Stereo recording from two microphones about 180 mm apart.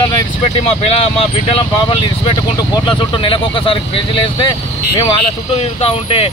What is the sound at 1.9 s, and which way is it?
Speech, 25° left (ahead or behind).